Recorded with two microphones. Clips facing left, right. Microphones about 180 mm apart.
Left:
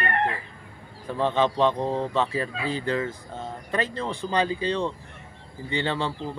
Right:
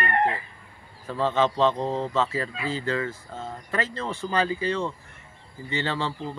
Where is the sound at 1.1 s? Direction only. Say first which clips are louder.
Even; 15° left (ahead or behind).